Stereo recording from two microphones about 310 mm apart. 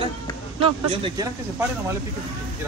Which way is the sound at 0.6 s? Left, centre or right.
Centre.